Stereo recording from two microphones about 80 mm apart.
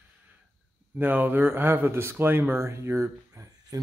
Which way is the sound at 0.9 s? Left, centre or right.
Right.